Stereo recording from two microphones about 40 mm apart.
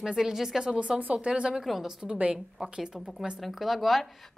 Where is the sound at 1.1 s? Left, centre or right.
Right.